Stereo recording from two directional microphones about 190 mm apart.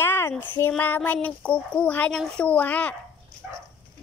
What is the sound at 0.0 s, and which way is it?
Speech, 10° left (ahead or behind).